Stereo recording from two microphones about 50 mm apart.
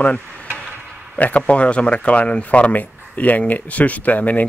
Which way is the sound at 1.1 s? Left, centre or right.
Left.